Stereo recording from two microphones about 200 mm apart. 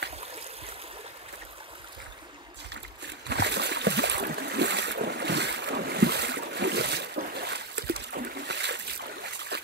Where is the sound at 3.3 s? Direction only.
60° right (ahead or behind).